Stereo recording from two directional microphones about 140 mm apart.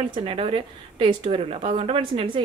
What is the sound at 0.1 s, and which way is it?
A woman's voice, 40° right (ahead or behind).